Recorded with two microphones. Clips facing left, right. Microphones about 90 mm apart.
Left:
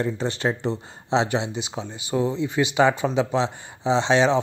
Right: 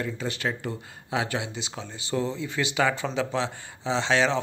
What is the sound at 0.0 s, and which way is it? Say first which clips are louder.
Speech: left 5 dB; 30° left (ahead or behind).